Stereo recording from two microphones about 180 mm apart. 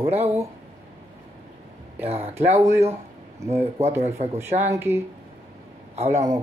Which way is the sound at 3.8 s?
40° right (ahead or behind).